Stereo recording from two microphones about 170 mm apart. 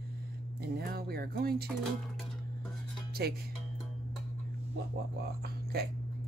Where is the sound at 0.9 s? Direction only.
65° right (ahead or behind).